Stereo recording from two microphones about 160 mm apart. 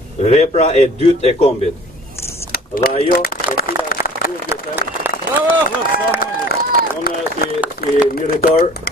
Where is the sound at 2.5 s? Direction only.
70° left (ahead or behind).